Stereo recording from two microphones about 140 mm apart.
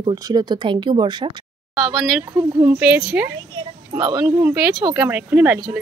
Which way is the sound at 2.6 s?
10° right (ahead or behind).